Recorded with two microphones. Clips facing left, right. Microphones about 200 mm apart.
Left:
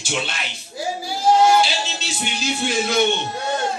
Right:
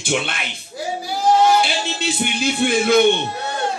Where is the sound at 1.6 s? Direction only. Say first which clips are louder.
Right 1 dB; 55° right (ahead or behind).